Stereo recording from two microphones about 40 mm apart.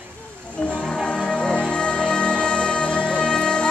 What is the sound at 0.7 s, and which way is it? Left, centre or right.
Music, left.